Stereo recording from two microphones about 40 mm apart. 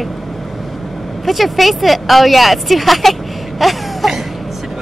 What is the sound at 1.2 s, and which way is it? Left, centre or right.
Speech, centre.